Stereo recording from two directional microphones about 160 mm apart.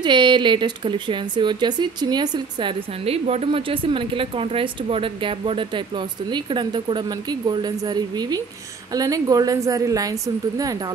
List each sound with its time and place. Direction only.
0.0 s speech: 30° right (ahead or behind)
3.1 s a woman's voice: 40° right (ahead or behind); by 10.8 s 20° right (ahead or behind)